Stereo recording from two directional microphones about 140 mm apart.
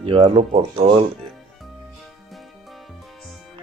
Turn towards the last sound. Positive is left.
turn(degrees=0)  # may be behind; listen again after turning